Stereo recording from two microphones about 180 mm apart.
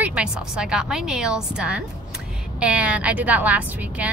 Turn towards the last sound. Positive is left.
turn(degrees=-10)  # may be behind; listen again after turning